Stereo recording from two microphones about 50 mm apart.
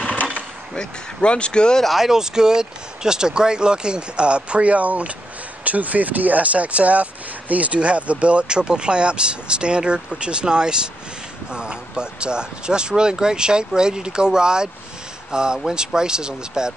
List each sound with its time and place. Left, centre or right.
0.0 s a sound: left
0.7 s speech: left
1.8 s speech: centre